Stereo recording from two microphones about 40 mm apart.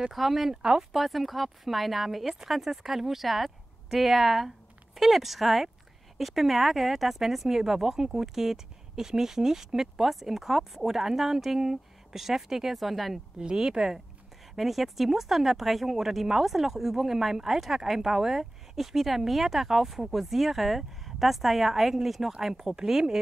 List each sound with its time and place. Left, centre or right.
0.1 s speech: centre
0.6 s speech: centre
0.9 s speech: centre
13.6 s speech: centre